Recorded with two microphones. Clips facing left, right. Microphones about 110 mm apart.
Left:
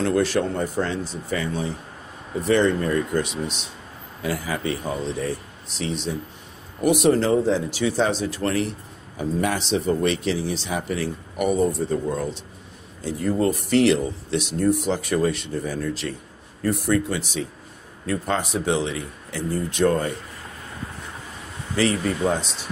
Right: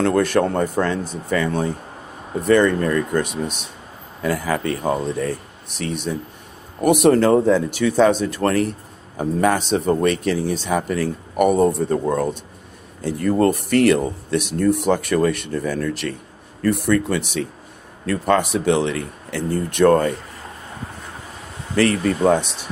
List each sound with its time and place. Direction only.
0.0 s speech: 55° right (ahead or behind)
21.7 s speech: 65° right (ahead or behind)